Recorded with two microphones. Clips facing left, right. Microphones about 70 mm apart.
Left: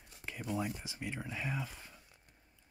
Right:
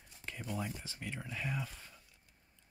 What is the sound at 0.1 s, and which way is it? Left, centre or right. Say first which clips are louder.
Speech: left 3 dB; centre.